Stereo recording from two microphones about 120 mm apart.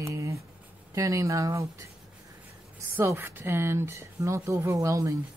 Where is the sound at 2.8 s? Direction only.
20° right (ahead or behind).